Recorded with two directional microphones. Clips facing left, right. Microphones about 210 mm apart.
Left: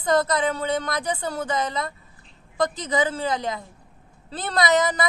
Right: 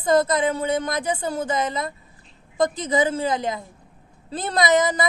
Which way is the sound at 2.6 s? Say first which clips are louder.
Right 3 dB; 25° right (ahead or behind).